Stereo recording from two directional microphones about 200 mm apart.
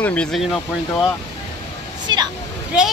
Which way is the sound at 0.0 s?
5° left (ahead or behind).